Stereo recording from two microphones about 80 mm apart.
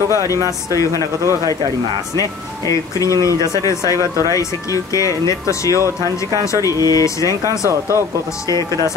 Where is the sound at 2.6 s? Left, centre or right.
Left.